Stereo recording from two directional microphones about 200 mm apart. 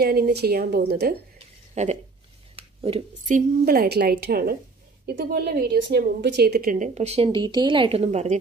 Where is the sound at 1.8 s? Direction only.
35° right (ahead or behind).